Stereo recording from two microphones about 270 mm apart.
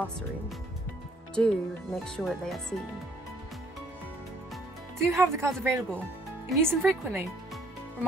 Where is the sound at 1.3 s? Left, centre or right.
Centre.